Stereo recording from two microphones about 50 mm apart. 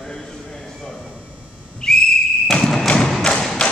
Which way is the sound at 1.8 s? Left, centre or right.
Centre.